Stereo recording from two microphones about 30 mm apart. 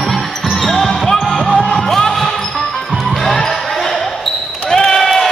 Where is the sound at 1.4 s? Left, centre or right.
Left.